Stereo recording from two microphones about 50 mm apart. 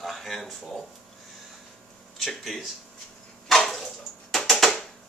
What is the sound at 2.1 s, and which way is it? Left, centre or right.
Speech, centre.